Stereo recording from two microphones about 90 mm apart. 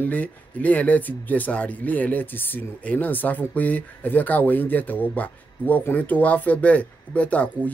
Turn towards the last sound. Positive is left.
turn(degrees=15)  # may be behind; listen again after turning